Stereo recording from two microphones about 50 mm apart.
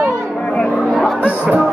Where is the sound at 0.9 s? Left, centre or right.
Centre.